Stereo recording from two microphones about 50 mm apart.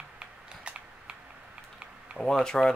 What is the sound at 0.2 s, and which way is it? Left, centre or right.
Mechanisms, right.